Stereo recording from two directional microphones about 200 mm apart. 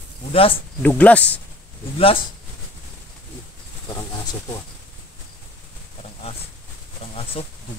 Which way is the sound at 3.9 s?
20° left (ahead or behind).